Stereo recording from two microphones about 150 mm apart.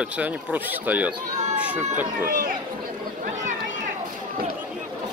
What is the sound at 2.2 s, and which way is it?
Speech, 65° right (ahead or behind).